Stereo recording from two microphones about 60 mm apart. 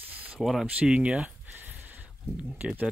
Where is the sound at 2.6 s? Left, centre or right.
Right.